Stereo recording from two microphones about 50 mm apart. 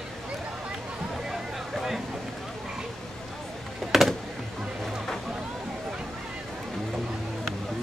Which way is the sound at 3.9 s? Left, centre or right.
Centre.